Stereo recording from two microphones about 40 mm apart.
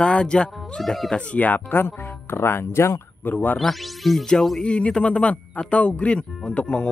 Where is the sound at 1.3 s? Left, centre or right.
Left.